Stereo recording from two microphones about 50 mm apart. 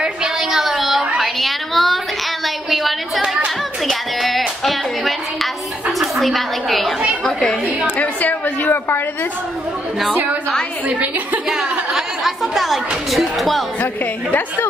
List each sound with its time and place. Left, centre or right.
0.0 s a sound: centre
3.8 s a woman's voice: centre
7.2 s a woman's voice: centre
8.0 s a woman's voice: left
11.9 s speech: centre